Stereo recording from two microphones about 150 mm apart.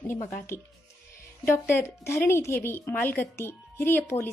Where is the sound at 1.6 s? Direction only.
15° left (ahead or behind).